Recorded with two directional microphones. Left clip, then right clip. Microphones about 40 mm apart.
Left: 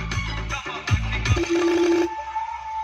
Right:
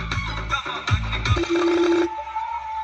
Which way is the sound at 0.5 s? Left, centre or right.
Centre.